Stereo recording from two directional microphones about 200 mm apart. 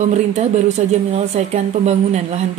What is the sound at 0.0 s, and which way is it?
Speech, 35° right (ahead or behind).